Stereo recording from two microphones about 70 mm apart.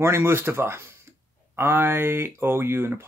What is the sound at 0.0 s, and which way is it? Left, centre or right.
Speech, right.